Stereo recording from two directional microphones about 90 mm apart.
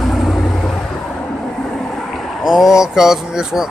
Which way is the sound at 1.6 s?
5° left (ahead or behind).